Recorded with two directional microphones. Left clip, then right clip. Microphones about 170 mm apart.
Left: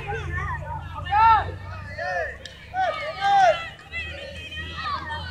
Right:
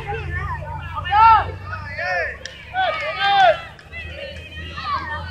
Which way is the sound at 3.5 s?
50° right (ahead or behind).